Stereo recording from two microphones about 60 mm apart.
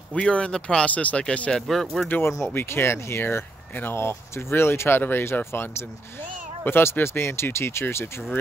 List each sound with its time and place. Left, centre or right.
0.1 s speech: centre
1.5 s speech: centre
2.0 s speech: left
2.5 s speech: left